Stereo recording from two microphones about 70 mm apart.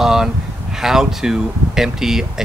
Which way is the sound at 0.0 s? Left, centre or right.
Centre.